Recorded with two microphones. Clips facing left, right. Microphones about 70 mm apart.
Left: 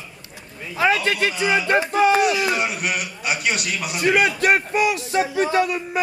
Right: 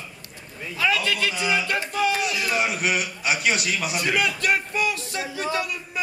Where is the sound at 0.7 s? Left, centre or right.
Left.